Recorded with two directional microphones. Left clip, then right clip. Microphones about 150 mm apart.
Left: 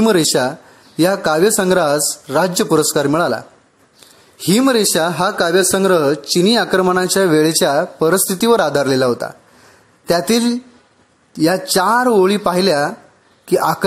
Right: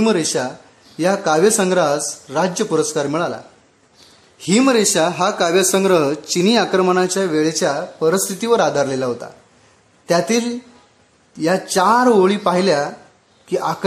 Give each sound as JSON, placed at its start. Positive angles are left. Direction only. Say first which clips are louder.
{"t": 0.0, "sound": "speech", "louder": "left 4 dB", "side_deg": 35}
{"t": 4.4, "sound": "speech", "louder": "left 1 dB", "side_deg": 35}